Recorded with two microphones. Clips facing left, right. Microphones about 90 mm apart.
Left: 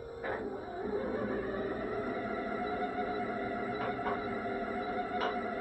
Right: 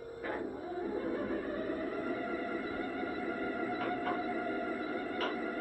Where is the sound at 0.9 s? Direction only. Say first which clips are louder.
Left 2 dB; 15° left (ahead or behind).